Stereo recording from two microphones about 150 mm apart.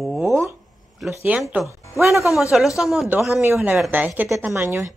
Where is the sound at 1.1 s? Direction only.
10° right (ahead or behind).